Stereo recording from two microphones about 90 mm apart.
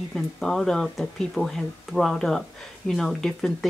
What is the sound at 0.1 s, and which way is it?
Speech, 5° left (ahead or behind).